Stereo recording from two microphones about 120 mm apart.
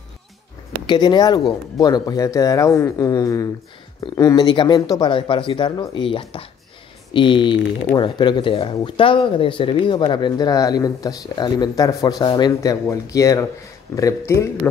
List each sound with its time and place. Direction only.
0.8 s speech: 40° left (ahead or behind)
5.1 s speech: 45° left (ahead or behind); by 14.5 s 25° left (ahead or behind)